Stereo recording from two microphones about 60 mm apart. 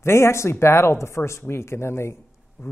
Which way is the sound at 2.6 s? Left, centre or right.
Left.